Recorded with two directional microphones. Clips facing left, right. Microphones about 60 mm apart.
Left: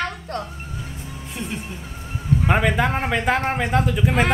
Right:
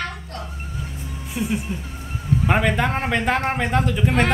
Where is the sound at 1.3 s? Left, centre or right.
Centre.